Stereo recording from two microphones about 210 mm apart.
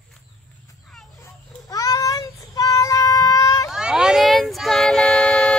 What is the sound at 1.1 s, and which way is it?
Child singing, 15° left (ahead or behind).